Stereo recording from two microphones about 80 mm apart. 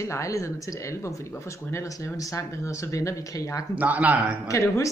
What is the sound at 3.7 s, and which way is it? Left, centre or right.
Speech, centre.